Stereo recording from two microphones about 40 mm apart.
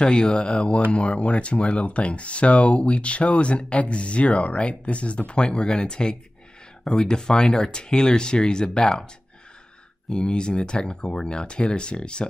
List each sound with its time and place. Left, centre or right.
0.0 s speech: left
10.0 s speech: left